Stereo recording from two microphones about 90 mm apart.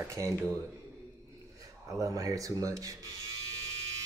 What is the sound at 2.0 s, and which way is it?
Speech, 40° right (ahead or behind).